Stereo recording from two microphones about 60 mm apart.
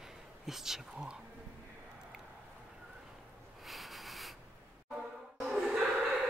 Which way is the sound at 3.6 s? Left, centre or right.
Centre.